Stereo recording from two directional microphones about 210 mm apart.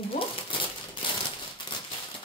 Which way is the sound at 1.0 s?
25° left (ahead or behind).